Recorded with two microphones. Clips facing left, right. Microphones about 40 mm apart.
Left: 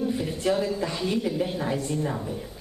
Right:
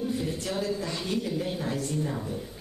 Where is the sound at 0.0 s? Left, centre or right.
Centre.